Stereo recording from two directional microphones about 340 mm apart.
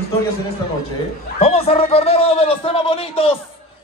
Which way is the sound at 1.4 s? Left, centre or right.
Centre.